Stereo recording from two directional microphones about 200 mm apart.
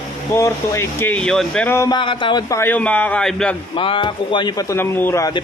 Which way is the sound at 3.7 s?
25° left (ahead or behind).